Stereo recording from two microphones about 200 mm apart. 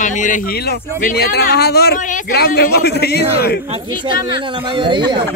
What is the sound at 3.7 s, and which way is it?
Speech, 30° right (ahead or behind).